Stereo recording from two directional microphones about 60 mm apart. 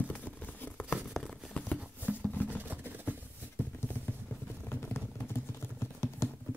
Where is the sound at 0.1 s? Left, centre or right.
Left.